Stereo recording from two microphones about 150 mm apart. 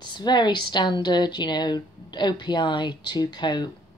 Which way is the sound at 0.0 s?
30° left (ahead or behind).